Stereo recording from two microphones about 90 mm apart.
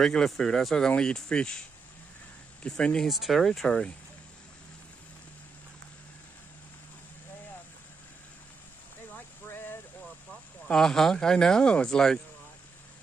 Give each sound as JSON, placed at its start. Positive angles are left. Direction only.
{"t": 0.0, "sound": "speech", "side_deg": 5}
{"t": 2.6, "sound": "speech", "side_deg": 10}
{"t": 9.1, "sound": "a sound", "side_deg": 25}
{"t": 10.7, "sound": "speech", "side_deg": 5}